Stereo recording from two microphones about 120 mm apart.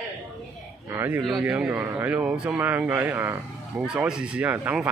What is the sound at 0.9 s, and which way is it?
Speech, 25° right (ahead or behind).